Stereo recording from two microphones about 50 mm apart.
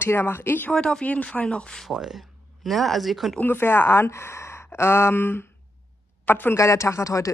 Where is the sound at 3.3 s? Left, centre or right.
Left.